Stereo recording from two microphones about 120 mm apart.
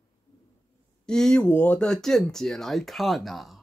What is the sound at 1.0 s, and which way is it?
Speech, 5° left (ahead or behind).